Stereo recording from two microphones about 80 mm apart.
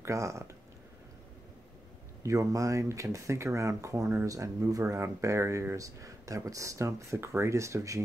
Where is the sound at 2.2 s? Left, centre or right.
Right.